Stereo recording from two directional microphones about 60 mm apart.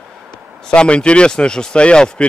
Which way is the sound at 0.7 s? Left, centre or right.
Centre.